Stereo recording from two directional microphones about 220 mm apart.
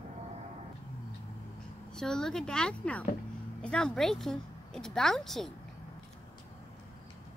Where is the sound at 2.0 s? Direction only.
5° left (ahead or behind).